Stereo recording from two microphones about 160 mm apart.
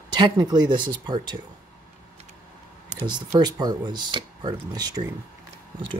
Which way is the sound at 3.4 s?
25° right (ahead or behind).